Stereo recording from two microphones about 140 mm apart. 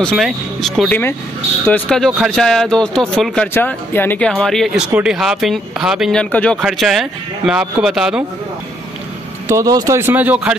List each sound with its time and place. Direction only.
0.0 s a man's voice: 5° left (ahead or behind)
3.5 s speech: 15° left (ahead or behind)
4.3 s a man's voice: 5° left (ahead or behind)
6.3 s a man's voice: 10° left (ahead or behind)
9.5 s speech: 25° right (ahead or behind)